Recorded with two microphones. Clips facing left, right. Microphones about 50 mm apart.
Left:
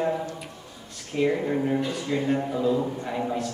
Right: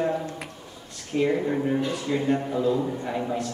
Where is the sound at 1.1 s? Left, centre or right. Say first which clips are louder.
Right 1 dB; centre.